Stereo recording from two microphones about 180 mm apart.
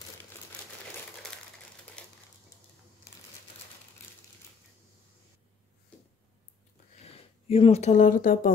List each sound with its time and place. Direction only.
2.0 s crushing: 5° left (ahead or behind)
7.1 s speech: 35° left (ahead or behind); by 8.5 s 50° left (ahead or behind)